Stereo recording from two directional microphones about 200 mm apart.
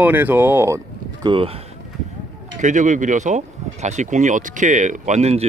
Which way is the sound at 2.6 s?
40° right (ahead or behind).